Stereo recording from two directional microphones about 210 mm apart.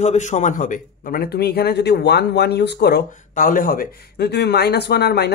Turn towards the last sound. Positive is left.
turn(degrees=50)  # may be behind; listen again after turning